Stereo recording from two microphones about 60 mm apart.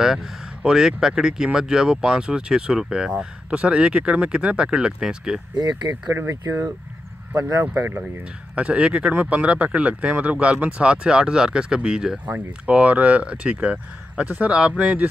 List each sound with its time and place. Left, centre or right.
0.0 s speech: centre
6.1 s speech: right
8.5 s speech: right
12.6 s speech: right